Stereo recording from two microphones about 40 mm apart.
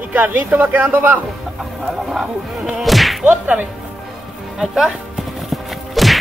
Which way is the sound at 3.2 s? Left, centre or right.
Right.